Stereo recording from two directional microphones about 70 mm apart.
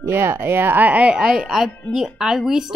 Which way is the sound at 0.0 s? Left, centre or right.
Right.